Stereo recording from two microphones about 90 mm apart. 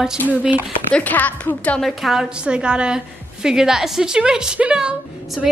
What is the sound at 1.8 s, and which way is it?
A woman's voice, 5° right (ahead or behind).